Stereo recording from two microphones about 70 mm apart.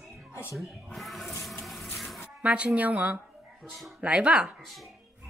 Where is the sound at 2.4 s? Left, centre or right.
Centre.